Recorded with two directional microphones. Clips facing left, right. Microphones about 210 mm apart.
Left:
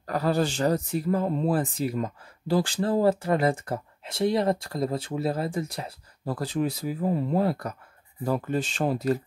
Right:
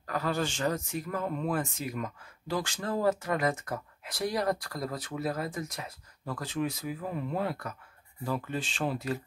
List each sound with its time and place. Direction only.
0.0 s speech: 35° left (ahead or behind)